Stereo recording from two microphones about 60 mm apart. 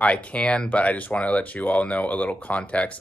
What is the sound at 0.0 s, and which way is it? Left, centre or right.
Speech, centre.